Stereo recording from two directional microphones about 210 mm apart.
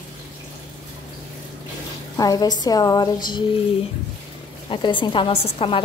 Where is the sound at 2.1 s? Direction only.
15° left (ahead or behind).